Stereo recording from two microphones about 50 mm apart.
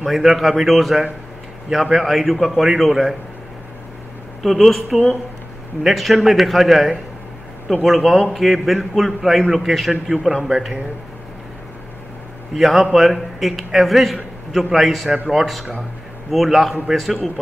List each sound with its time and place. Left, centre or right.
0.0 s a man's voice: centre
4.4 s a man's voice: centre
12.5 s a man's voice: centre